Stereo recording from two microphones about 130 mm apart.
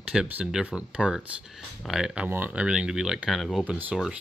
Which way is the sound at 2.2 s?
15° right (ahead or behind).